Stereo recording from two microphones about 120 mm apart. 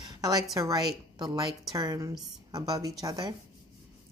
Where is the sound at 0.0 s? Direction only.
35° right (ahead or behind).